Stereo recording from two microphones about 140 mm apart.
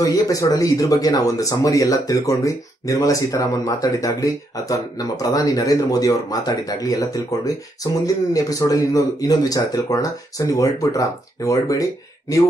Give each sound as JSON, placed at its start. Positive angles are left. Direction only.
{"t": 0.0, "sound": "speech", "side_deg": 25}